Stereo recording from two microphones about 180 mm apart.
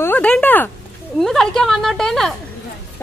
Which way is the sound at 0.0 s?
10° left (ahead or behind).